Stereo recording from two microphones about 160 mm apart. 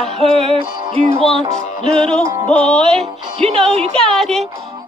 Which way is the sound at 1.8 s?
5° left (ahead or behind).